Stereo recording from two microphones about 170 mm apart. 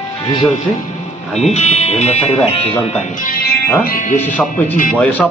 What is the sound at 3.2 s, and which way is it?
Speech, 60° left (ahead or behind).